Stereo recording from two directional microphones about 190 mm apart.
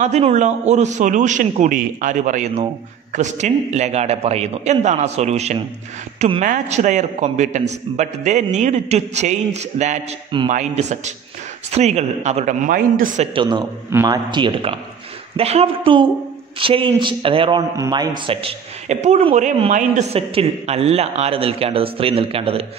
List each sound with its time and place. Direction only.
0.0 s a man's voice: 35° right (ahead or behind)
10.3 s a man's voice: 25° right (ahead or behind)
10.8 s a man's voice: 35° right (ahead or behind)
13.3 s a man's voice: 25° right (ahead or behind)